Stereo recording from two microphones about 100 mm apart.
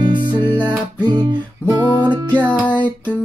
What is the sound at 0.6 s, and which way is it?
Music, 15° left (ahead or behind).